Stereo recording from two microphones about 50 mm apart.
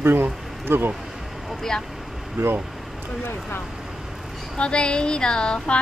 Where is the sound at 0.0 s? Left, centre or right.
Right.